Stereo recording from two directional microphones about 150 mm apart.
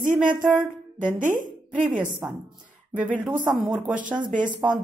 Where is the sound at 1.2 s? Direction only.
60° right (ahead or behind).